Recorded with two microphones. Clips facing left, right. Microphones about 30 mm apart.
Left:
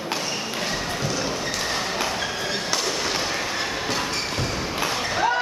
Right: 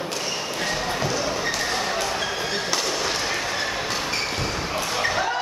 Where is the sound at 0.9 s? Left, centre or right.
Centre.